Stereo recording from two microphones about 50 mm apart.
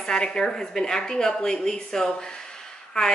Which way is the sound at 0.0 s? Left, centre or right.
Centre.